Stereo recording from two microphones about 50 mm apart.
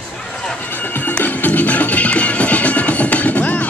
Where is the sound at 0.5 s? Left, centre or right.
Left.